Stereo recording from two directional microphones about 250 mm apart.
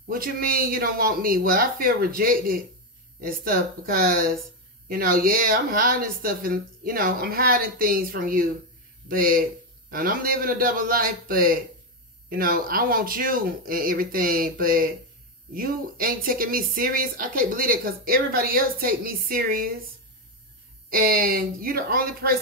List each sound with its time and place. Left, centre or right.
0.1 s speech: right
20.9 s speech: right